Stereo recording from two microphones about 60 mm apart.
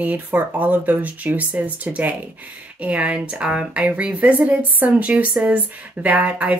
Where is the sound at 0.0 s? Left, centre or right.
Right.